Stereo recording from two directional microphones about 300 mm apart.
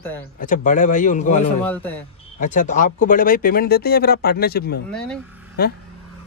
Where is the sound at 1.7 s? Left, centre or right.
Centre.